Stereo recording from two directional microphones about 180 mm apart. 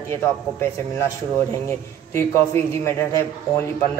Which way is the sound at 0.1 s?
15° left (ahead or behind).